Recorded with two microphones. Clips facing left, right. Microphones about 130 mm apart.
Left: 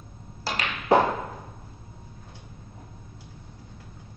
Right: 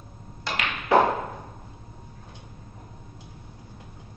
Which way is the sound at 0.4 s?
35° left (ahead or behind).